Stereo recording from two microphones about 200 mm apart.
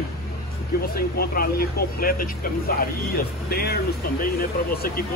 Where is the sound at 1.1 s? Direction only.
50° left (ahead or behind).